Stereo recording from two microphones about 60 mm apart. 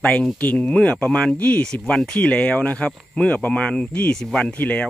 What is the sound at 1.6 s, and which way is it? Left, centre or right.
Speech, centre.